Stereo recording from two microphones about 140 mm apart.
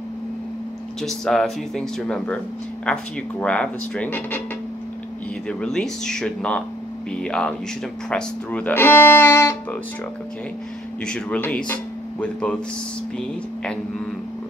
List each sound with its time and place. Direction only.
1.0 s speech: centre (ahead or behind)
5.5 s speech: 5° left (ahead or behind)
11.1 s speech: 10° left (ahead or behind)